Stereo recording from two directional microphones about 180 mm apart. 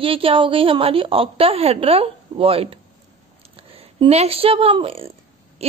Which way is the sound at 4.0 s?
35° right (ahead or behind).